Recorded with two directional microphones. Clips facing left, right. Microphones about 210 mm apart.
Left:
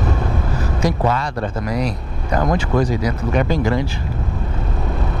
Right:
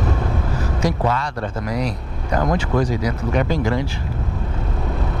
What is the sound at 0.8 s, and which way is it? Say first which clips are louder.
Speech: left 2 dB; 10° left (ahead or behind).